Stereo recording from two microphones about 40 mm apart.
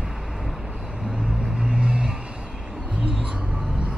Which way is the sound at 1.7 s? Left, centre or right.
Right.